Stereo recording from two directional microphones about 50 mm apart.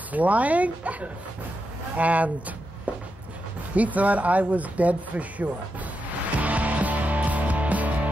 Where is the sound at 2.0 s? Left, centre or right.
Right.